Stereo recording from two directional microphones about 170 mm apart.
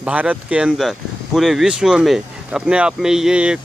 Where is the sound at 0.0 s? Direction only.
10° right (ahead or behind).